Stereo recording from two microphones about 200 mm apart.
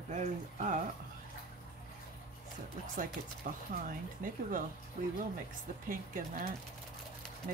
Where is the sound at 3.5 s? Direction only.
35° right (ahead or behind).